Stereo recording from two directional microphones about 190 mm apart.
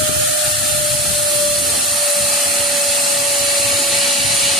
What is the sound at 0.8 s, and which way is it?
Vacuum cleaner, centre (ahead or behind).